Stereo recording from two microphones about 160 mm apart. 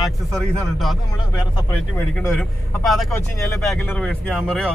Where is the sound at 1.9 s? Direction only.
15° left (ahead or behind).